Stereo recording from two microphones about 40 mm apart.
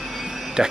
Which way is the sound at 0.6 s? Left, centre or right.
Centre.